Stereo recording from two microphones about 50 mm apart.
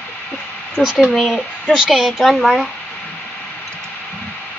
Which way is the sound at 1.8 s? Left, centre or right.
Centre.